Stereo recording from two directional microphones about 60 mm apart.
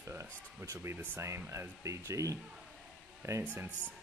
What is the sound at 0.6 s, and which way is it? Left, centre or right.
Speech, right.